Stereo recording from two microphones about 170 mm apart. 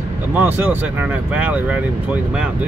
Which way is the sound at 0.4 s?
10° right (ahead or behind).